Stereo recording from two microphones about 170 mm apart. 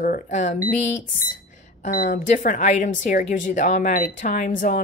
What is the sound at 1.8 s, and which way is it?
Speech, 50° left (ahead or behind).